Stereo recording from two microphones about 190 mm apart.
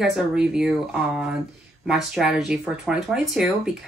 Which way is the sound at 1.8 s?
Centre (ahead or behind).